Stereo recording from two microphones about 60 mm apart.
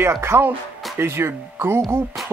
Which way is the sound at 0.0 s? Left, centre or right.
Right.